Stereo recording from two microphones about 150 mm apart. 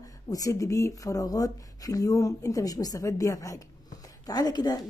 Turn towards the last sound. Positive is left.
turn(degrees=25)  # may be behind; listen again after turning